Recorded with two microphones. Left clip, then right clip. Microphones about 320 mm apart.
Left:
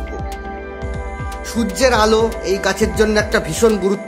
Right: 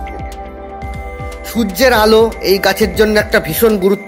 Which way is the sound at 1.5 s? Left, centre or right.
Centre.